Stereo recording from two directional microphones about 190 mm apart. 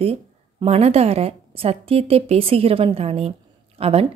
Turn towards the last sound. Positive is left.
turn(degrees=-30)  # may be behind; listen again after turning